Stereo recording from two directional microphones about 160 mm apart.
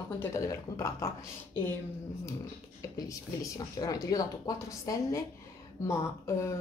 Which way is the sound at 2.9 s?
20° left (ahead or behind).